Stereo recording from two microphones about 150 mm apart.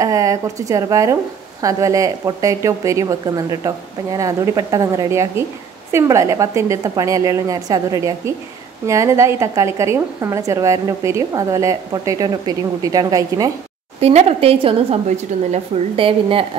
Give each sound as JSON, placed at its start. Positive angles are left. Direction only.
{"t": 0.0, "sound": "a woman's voice", "side_deg": -20}
{"t": 13.9, "sound": "a woman's voice", "side_deg": -45}